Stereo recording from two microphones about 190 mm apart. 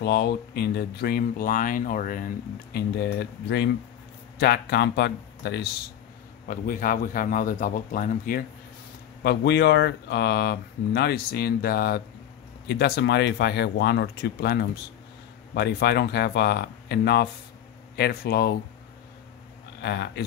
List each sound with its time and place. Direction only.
0.0 s speech: 60° left (ahead or behind)
6.4 s a man's voice: 45° left (ahead or behind)
9.2 s speech: 60° left (ahead or behind)
19.8 s speech: 60° left (ahead or behind)